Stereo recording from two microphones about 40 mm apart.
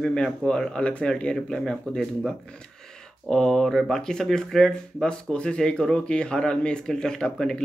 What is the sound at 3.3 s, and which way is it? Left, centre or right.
Speech, centre.